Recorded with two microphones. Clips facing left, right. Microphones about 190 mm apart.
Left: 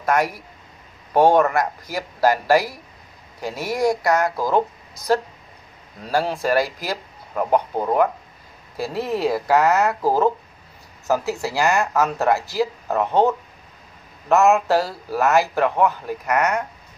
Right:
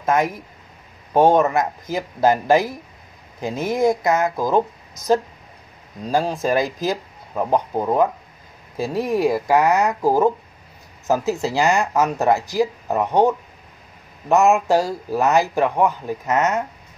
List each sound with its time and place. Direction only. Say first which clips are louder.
0.0 s speech: right 1 dB; 20° right (ahead or behind)
6.0 s speech: right 1 dB; 15° right (ahead or behind)
14.3 s speech: right 1 dB; 15° right (ahead or behind)